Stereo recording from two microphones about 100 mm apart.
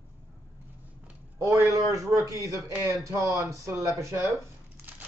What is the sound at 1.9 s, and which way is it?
Speech, 35° right (ahead or behind).